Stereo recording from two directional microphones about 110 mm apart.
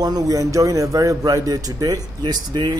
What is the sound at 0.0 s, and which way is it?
A man's voice, 35° right (ahead or behind).